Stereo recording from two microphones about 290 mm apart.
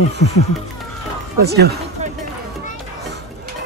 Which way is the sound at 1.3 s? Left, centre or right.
Right.